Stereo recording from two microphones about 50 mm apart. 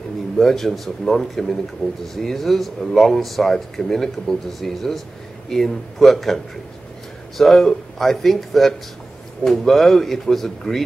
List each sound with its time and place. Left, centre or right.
0.4 s speech: centre
1.8 s speech: centre
2.1 s speech: centre